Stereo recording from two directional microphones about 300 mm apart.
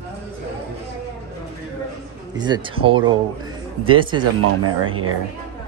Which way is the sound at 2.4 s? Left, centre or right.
Centre.